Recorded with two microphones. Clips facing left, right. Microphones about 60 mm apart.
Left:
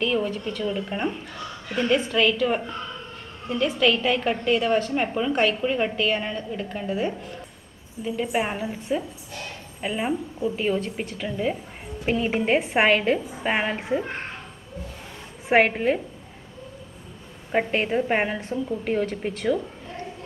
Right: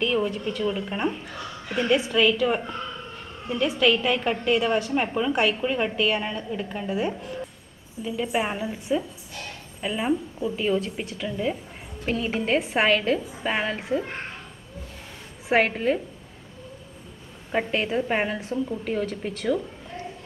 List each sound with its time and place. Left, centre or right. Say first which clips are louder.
0.0 s a woman's voice: even; centre
8.0 s a woman's voice: left 1 dB; centre
9.8 s a woman's voice: right 1 dB; centre
12.5 s a woman's voice: left 1 dB; centre
15.4 s a woman's voice: left 2 dB; centre
17.5 s a woman's voice: left 2 dB; centre